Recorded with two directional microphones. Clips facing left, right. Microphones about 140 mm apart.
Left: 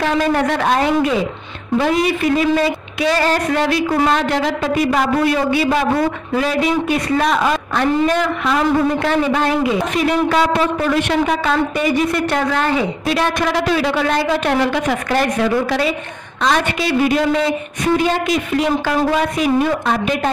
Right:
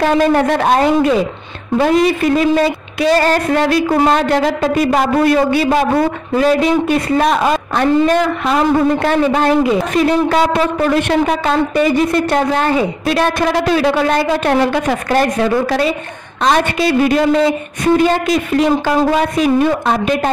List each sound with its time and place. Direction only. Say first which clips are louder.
0.0 s a man's voice: right 4 dB; 40° right (ahead or behind)
2.3 s a woman's voice: right 3 dB; 40° right (ahead or behind)
18.3 s a man's voice: right 4 dB; 40° right (ahead or behind)